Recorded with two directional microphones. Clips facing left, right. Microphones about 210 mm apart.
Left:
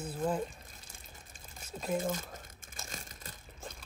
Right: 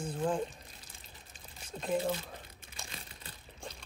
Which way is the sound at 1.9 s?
45° left (ahead or behind).